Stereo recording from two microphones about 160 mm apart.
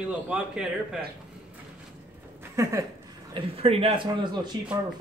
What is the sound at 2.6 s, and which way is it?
Speech, 20° right (ahead or behind).